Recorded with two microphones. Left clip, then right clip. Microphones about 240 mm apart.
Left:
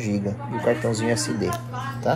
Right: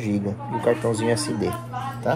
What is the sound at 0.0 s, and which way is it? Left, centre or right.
Speech, centre.